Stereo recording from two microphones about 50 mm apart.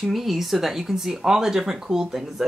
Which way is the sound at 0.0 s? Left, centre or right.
Centre.